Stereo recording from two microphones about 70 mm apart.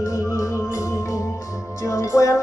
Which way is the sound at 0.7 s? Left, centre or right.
Left.